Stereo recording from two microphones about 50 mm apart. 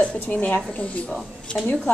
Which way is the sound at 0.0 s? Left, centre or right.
Left.